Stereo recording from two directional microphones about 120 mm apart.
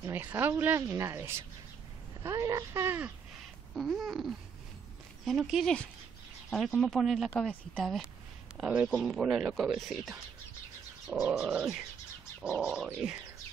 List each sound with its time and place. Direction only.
0.0 s speech: 15° right (ahead or behind)
3.7 s speech: centre (ahead or behind)
11.1 s a sound: 10° right (ahead or behind)